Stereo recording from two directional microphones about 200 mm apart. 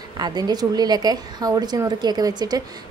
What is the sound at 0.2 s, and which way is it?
A woman's voice, 20° right (ahead or behind).